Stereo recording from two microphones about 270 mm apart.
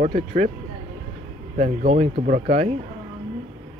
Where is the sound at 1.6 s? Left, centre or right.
Right.